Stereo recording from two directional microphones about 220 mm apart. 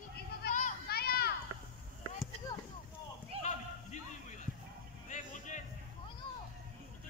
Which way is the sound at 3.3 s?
25° right (ahead or behind).